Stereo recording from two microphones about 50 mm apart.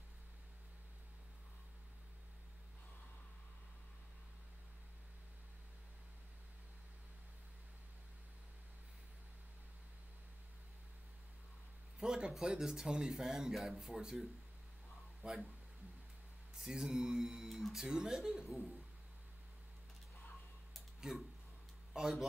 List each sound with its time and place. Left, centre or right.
12.0 s speech: centre
15.2 s speech: right
16.6 s speech: centre
21.0 s speech: centre